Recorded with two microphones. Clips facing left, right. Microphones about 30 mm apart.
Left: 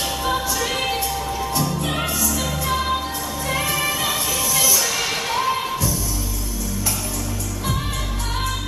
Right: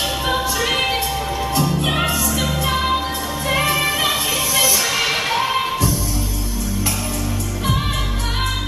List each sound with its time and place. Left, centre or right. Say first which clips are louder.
0.2 s music: right 1 dB; right